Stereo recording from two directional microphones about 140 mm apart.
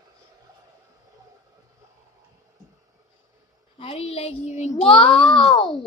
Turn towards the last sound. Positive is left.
turn(degrees=40)  # may be behind; listen again after turning